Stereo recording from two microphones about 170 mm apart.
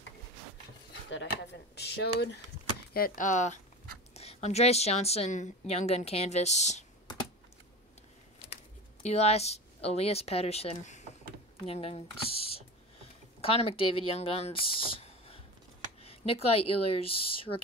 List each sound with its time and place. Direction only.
1.1 s speech: 90° left
2.9 s a woman's voice: 55° left (ahead or behind)
9.0 s a woman's voice: 40° left (ahead or behind)